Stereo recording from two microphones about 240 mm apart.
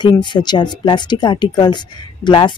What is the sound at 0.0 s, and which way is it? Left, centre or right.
Speech, centre.